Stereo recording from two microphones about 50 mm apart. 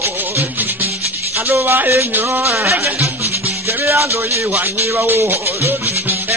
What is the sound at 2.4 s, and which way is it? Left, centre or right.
Speech, right.